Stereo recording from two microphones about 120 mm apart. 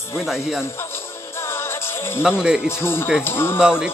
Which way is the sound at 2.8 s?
20° left (ahead or behind).